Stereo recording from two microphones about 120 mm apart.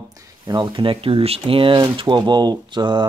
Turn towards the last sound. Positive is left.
turn(degrees=-40)  # may be behind; listen again after turning